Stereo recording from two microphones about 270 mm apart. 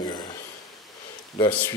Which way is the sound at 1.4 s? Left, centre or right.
Centre.